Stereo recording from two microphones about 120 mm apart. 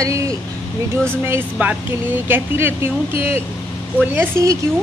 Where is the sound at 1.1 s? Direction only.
20° right (ahead or behind).